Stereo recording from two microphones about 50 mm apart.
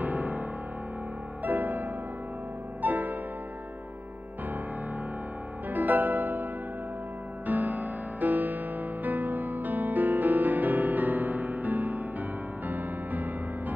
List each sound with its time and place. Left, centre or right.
0.0 s music: right
5.7 s music: right
7.4 s music: right